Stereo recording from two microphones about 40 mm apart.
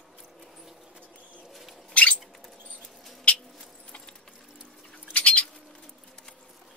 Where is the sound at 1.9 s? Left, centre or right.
Left.